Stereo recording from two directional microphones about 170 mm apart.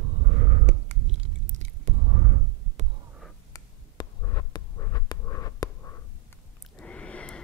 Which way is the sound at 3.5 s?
25° left (ahead or behind).